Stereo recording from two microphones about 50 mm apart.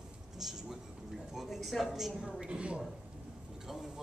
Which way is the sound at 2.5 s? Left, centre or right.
Right.